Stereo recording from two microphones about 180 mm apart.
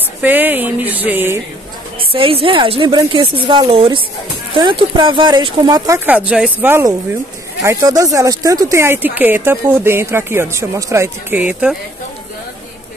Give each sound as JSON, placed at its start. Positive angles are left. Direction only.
{"t": 0.2, "sound": "speech", "side_deg": -10}
{"t": 2.1, "sound": "a woman's voice", "side_deg": -30}
{"t": 5.9, "sound": "speech", "side_deg": -10}